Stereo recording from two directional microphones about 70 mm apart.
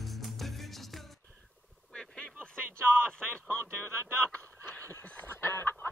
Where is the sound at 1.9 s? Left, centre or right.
Centre.